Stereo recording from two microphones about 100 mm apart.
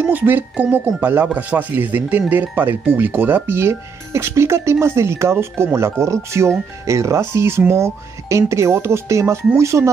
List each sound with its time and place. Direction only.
0.0 s speech: 20° right (ahead or behind)